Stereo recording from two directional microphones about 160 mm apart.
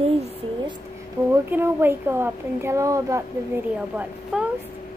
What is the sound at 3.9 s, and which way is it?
Speech, 10° right (ahead or behind).